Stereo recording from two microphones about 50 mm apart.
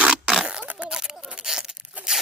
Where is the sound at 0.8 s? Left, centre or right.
Centre.